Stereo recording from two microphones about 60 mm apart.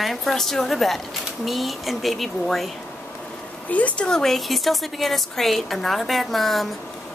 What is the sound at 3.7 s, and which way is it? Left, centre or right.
Speech, left.